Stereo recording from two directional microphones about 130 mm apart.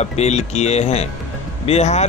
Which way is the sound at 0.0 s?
55° left (ahead or behind).